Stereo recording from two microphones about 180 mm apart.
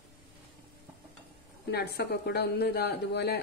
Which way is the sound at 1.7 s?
60° left (ahead or behind).